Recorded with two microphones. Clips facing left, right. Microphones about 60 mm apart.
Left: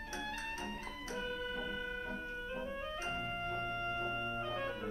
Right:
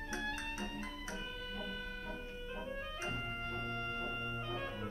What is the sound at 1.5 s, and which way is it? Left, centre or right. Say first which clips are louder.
Music: left 4 dB; left.